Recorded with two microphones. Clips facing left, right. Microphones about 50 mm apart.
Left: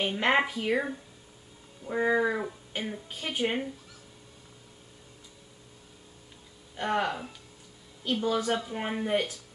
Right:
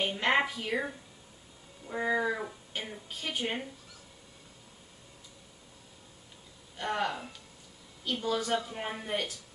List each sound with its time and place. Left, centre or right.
0.0 s speech: centre
6.8 s speech: centre